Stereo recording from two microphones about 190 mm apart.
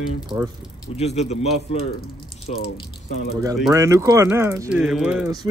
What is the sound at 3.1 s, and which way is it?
Speech, 55° left (ahead or behind).